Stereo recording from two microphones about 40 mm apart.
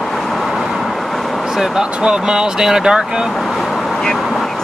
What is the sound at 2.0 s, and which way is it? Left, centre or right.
Speech, centre.